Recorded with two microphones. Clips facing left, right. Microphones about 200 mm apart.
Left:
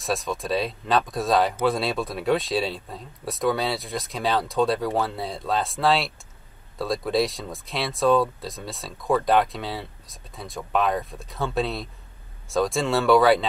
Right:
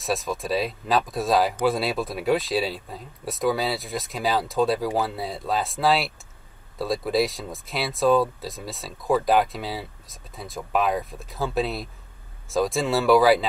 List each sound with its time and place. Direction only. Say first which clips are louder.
0.0 s speech: even; centre (ahead or behind)